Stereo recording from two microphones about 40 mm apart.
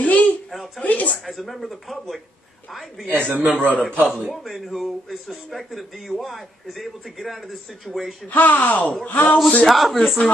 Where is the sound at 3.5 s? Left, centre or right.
Right.